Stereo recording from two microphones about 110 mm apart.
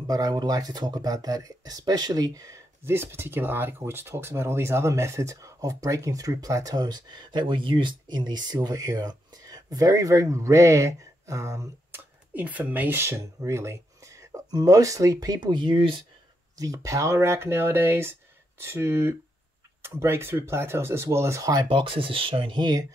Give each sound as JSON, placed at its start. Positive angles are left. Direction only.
{"t": 0.0, "sound": "speech", "side_deg": -35}
{"t": 2.8, "sound": "speech", "side_deg": -20}
{"t": 12.4, "sound": "speech", "side_deg": -15}
{"t": 16.5, "sound": "speech", "side_deg": -30}
{"t": 21.6, "sound": "speech", "side_deg": -50}